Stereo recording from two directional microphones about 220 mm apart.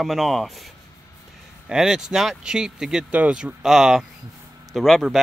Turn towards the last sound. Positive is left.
turn(degrees=0)  # may be behind; listen again after turning